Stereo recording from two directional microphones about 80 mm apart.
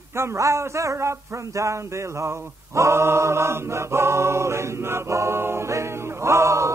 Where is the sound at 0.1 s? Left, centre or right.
Right.